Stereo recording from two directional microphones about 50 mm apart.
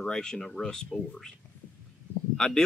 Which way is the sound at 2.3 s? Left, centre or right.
Centre.